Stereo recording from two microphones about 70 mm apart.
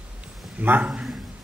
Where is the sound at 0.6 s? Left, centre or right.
Right.